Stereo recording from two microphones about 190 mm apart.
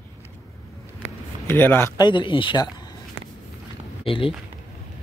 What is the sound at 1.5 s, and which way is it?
Speech, 10° left (ahead or behind).